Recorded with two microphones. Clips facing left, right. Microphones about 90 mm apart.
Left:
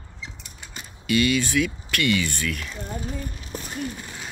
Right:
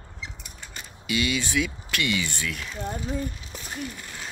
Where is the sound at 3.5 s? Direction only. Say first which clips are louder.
Left 6 dB; 40° left (ahead or behind).